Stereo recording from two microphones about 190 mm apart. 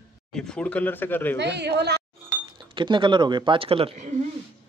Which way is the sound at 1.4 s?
65° right (ahead or behind).